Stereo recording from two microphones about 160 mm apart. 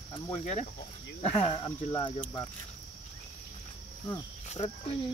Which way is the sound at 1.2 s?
35° left (ahead or behind).